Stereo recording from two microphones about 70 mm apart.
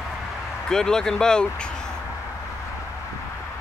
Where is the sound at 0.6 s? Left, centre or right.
Centre.